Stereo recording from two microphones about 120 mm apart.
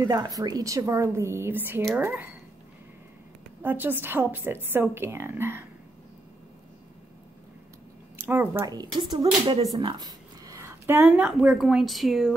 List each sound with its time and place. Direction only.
0.1 s a woman's voice: 30° right (ahead or behind)
3.6 s a woman's voice: 15° right (ahead or behind)
8.2 s speech: 15° right (ahead or behind)
8.9 s speech: 40° right (ahead or behind)
9.2 s a sound: 55° right (ahead or behind)
9.8 s a sound: 35° right (ahead or behind)
10.9 s a woman's voice: 15° right (ahead or behind); by 12.4 s centre (ahead or behind)